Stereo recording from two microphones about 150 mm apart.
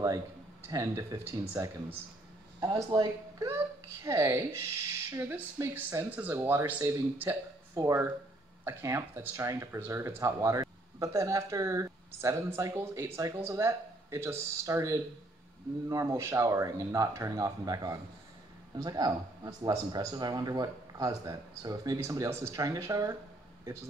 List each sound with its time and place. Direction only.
0.7 s speech: 20° right (ahead or behind)
2.6 s speech: 30° right (ahead or behind)
4.0 s speech: 20° right (ahead or behind)